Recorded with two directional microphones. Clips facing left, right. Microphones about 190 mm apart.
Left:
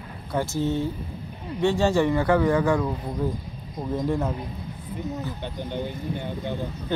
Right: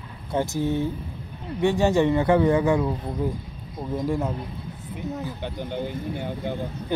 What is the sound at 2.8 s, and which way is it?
Speech, centre (ahead or behind).